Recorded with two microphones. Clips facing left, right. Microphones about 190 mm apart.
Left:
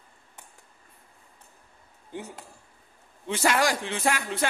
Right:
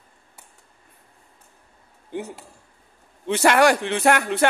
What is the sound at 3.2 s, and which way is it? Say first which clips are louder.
A man's voice: right 7 dB; 65° right (ahead or behind).